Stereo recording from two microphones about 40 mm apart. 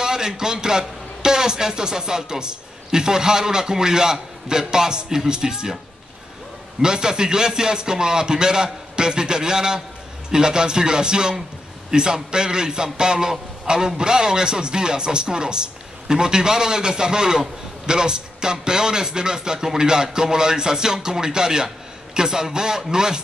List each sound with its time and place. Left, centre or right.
0.0 s a man's voice: centre
6.8 s a man's voice: centre